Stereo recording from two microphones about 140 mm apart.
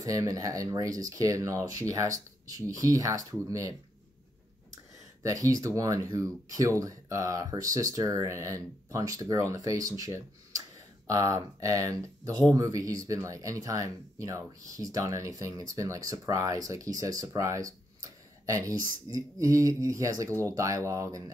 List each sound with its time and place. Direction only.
0.0 s speech: 25° right (ahead or behind)
5.2 s speech: 25° right (ahead or behind)